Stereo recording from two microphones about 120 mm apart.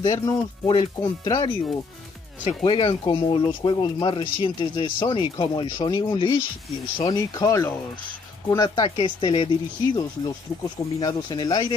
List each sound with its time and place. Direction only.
0.0 s speech: 30° left (ahead or behind)
0.7 s speech: 45° left (ahead or behind)
7.4 s speech: 25° left (ahead or behind)